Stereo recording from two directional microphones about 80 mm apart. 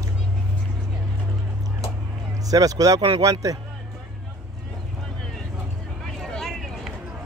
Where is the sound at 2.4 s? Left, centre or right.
Right.